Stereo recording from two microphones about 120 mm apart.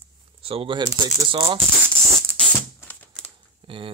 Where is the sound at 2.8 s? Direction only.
15° left (ahead or behind).